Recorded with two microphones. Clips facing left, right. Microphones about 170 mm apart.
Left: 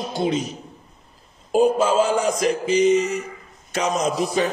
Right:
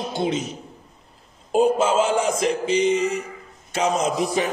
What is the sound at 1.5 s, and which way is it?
A man's voice, 25° right (ahead or behind).